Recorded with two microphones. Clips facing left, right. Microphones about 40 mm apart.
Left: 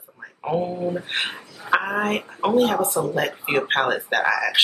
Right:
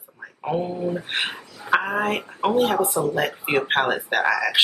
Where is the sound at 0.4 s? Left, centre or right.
Centre.